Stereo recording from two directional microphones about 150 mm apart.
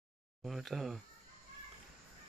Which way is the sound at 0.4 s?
Centre (ahead or behind).